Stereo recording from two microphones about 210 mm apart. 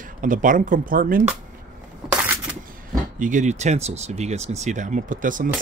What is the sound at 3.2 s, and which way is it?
Speech, 35° right (ahead or behind).